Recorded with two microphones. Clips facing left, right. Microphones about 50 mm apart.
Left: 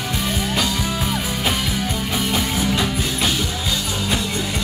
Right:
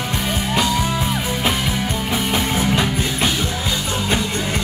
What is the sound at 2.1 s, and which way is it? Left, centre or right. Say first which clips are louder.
Music: right 3 dB; centre.